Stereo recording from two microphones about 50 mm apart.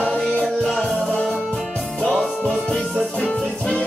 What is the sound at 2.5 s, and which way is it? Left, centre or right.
Music, centre.